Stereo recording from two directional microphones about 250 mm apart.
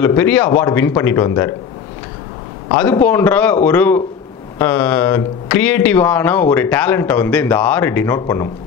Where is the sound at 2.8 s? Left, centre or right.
Centre.